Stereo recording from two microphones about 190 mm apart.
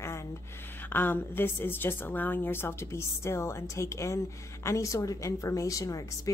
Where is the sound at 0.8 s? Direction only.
10° left (ahead or behind).